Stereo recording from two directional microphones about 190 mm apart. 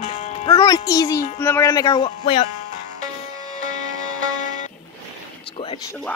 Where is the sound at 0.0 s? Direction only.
35° left (ahead or behind).